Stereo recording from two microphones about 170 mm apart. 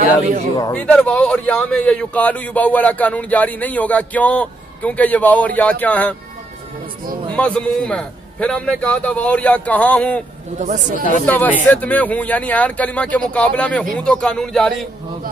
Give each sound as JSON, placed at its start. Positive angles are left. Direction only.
{"t": 0.7, "sound": "a man's voice", "side_deg": 5}
{"t": 7.3, "sound": "a man's voice", "side_deg": 5}
{"t": 10.6, "sound": "speech", "side_deg": -45}
{"t": 11.2, "sound": "a man's voice", "side_deg": 10}